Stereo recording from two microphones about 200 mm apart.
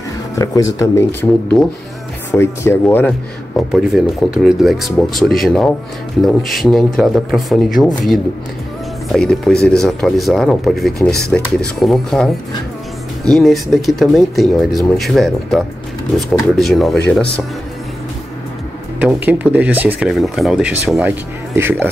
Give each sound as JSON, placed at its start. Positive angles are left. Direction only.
{"t": 0.4, "sound": "speech", "side_deg": 15}
{"t": 1.5, "sound": "speech", "side_deg": 0}
{"t": 2.3, "sound": "speech", "side_deg": 15}
{"t": 3.5, "sound": "speech", "side_deg": 0}
{"t": 13.3, "sound": "speech", "side_deg": 0}
{"t": 18.9, "sound": "speech", "side_deg": -10}